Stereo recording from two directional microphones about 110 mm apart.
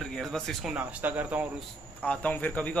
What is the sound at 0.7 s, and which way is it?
Speech, 15° right (ahead or behind).